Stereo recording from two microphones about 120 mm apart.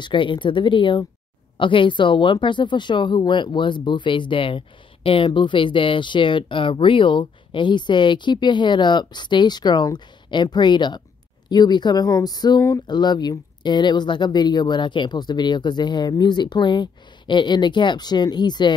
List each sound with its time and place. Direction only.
0.0 s speech: 45° left (ahead or behind)